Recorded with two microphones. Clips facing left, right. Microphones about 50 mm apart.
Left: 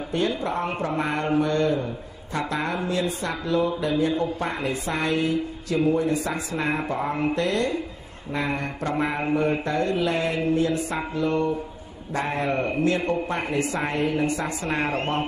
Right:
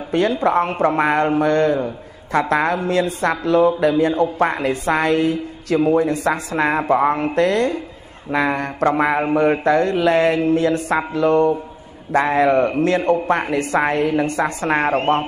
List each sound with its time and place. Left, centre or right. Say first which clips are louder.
0.1 s mantra: right 9 dB; right
15.0 s a man's voice: right 8 dB; right